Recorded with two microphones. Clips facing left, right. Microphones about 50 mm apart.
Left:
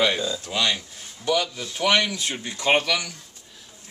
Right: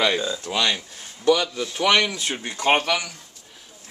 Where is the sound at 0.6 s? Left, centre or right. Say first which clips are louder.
Right 1 dB; right.